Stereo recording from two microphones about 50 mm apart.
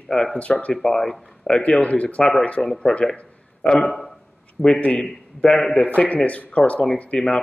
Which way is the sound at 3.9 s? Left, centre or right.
Centre.